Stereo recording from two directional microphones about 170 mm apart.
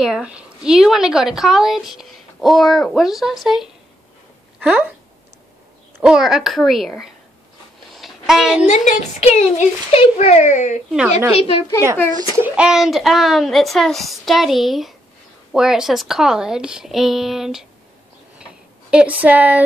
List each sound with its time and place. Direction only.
0.0 s speech: 5° right (ahead or behind)
6.0 s speech: 5° right (ahead or behind)
7.9 s a sound: centre (ahead or behind)
8.6 s a woman's voice: 45° left (ahead or behind)
12.1 s a child's voice: 25° right (ahead or behind)
12.4 s speech: 5° right (ahead or behind)
18.4 s tick-tock: 5° right (ahead or behind)